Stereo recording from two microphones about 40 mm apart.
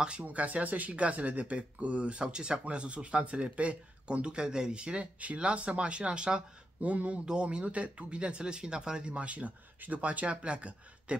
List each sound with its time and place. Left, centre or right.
0.3 s speech: right
7.2 s speech: right
7.6 s speech: right